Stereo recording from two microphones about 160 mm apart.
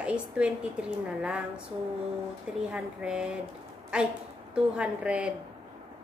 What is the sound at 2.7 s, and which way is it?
A woman's voice, 5° right (ahead or behind).